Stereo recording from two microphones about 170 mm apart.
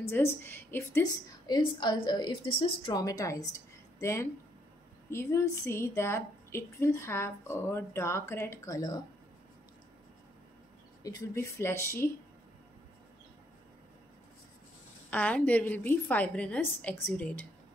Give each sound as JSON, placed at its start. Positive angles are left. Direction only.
{"t": 0.0, "sound": "a woman's voice", "side_deg": 15}
{"t": 1.5, "sound": "a woman's voice", "side_deg": 25}
{"t": 11.0, "sound": "a woman's voice", "side_deg": 20}
{"t": 15.0, "sound": "a woman's voice", "side_deg": 10}